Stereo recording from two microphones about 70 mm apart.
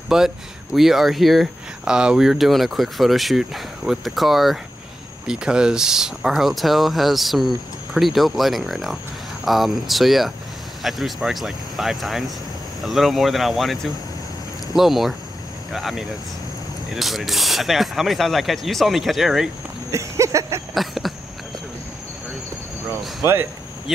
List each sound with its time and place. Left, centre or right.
0.1 s speech: centre
1.9 s speech: centre
14.8 s speech: centre
19.9 s a sound: right
20.7 s a sound: centre
23.2 s speech: right